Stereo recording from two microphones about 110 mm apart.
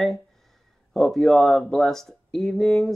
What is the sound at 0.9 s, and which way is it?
Speech, 5° left (ahead or behind).